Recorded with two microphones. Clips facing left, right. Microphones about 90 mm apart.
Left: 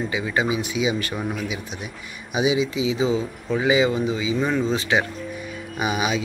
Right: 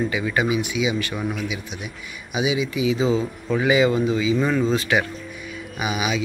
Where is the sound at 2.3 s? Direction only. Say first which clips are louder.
Left 2 dB; 30° left (ahead or behind).